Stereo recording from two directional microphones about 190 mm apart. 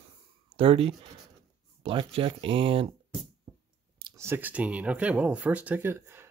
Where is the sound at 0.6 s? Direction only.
30° right (ahead or behind).